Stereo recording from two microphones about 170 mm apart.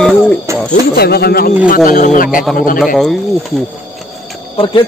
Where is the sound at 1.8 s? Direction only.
50° left (ahead or behind).